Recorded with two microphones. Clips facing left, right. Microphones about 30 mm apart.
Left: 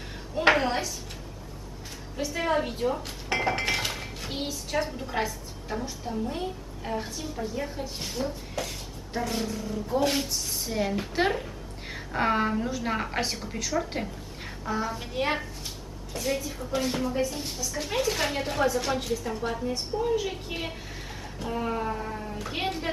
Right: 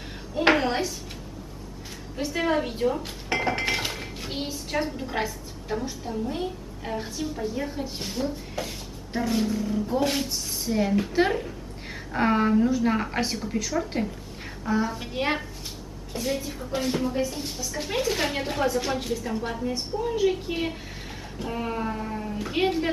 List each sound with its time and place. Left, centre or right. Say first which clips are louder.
0.4 s a sound: right 1 dB; centre
2.4 s a woman's voice: right 1 dB; centre
2.8 s dishes: right 3 dB; centre
4.5 s a woman's voice: right 1 dB; centre